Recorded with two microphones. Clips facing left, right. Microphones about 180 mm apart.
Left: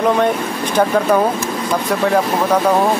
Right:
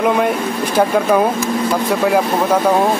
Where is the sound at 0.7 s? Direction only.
5° right (ahead or behind).